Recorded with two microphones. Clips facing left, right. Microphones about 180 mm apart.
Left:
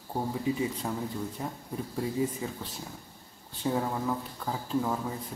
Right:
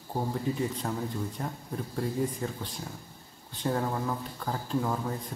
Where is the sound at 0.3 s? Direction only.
5° left (ahead or behind).